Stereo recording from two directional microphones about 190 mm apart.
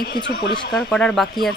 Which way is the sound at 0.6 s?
20° left (ahead or behind).